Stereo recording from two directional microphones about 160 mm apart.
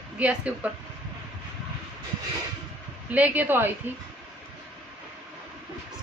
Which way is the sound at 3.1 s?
10° right (ahead or behind).